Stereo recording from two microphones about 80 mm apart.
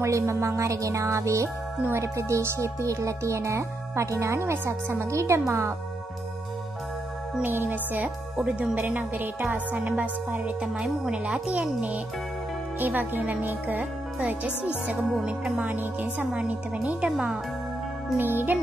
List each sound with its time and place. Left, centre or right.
0.0 s speech: right
7.4 s a woman's voice: right
15.5 s a woman's voice: centre
18.1 s a woman's voice: right